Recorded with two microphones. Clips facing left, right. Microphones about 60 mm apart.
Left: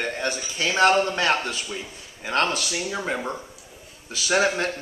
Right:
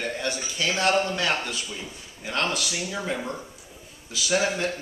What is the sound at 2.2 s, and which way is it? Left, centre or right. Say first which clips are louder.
Speech: left 4 dB; left.